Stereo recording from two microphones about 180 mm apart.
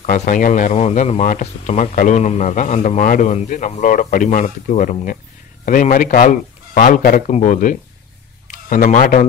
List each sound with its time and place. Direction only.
0.0 s a man's voice: 50° left (ahead or behind)
7.2 s a man's voice: 40° left (ahead or behind)